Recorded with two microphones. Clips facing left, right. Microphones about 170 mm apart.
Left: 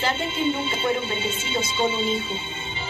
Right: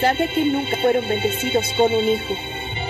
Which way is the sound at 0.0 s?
60° right (ahead or behind).